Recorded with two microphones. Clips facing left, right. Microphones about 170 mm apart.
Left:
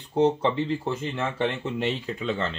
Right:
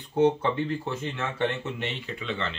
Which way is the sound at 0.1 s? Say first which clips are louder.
Left 1 dB; 30° left (ahead or behind).